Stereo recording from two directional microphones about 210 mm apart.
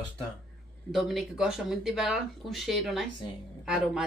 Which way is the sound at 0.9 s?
Centre (ahead or behind).